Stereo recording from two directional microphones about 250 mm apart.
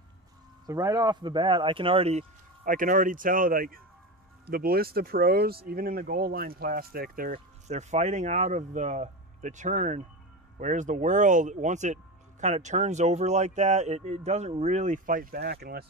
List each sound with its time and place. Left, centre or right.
0.7 s speech: centre; by 15.8 s right